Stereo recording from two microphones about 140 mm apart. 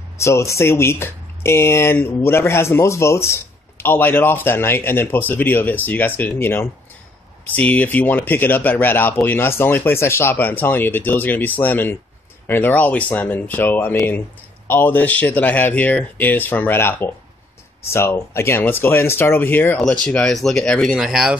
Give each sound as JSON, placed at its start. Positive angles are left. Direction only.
{"t": 0.2, "sound": "speech", "side_deg": 20}